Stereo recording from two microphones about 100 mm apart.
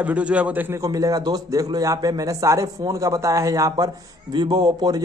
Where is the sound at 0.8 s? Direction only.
35° right (ahead or behind).